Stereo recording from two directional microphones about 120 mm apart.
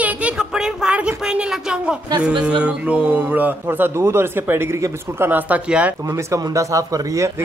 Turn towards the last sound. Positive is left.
turn(degrees=-25)  # may be behind; listen again after turning